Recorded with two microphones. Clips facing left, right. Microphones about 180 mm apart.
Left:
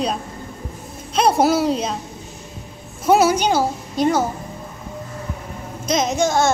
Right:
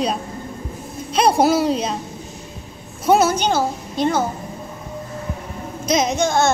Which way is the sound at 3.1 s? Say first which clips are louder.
Left 1 dB; 10° left (ahead or behind).